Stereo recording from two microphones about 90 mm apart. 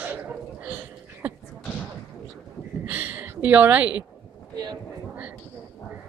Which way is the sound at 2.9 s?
20° right (ahead or behind).